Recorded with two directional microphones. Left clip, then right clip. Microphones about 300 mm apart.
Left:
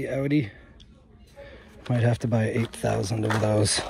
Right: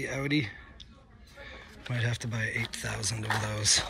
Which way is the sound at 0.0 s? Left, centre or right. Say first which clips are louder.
Left 5 dB; centre.